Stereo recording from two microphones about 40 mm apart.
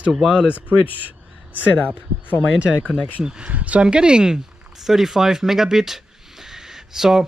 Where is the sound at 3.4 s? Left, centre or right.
Right.